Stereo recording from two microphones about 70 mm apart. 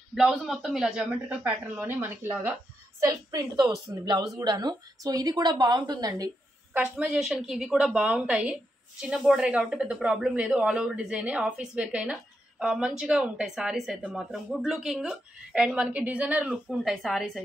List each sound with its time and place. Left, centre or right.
0.1 s a man's voice: centre; by 2.3 s right
3.0 s a woman's voice: right
3.5 s speech: right
7.2 s a woman's voice: centre
15.7 s speech: centre
16.7 s a woman's voice: centre